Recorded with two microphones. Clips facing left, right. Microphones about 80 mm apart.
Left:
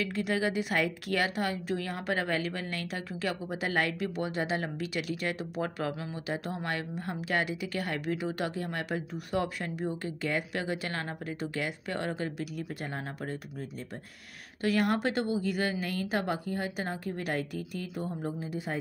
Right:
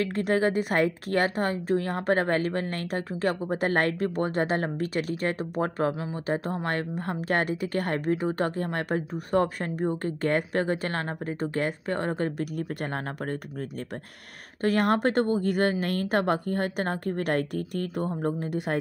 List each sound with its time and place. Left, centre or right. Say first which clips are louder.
0.0 s a woman's voice: right 6 dB; right
14.6 s a woman's voice: right 4 dB; right